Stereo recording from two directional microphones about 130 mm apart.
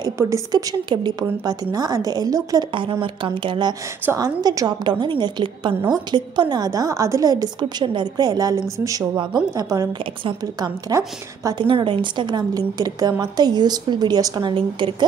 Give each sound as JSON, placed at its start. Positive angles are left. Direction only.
{"t": 0.0, "sound": "a woman's voice", "side_deg": -25}
{"t": 2.7, "sound": "a woman's voice", "side_deg": -40}